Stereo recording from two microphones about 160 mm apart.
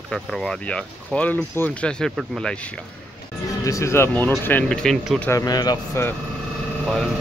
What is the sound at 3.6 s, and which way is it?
Speech, 20° left (ahead or behind).